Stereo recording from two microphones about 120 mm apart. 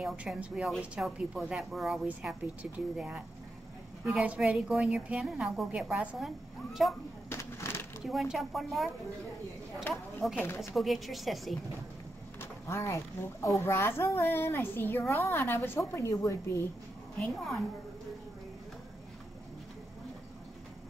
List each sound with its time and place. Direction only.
0.0 s a woman's voice: 5° right (ahead or behind)
7.2 s a sound: 20° left (ahead or behind)
8.0 s a woman's voice: centre (ahead or behind)
10.4 s a woman's voice: 20° left (ahead or behind)
10.7 s a woman's voice: centre (ahead or behind)
12.4 s a woman's voice: 25° left (ahead or behind)
17.2 s a woman's voice: centre (ahead or behind)